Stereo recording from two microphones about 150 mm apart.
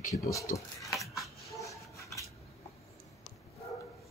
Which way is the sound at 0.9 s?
Centre (ahead or behind).